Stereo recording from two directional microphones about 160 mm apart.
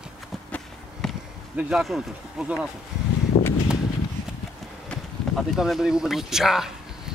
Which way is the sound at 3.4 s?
35° left (ahead or behind).